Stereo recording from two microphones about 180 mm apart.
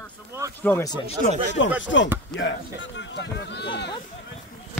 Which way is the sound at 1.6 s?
90° left.